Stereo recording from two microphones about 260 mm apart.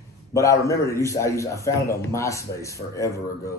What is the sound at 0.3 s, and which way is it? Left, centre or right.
Speech, centre.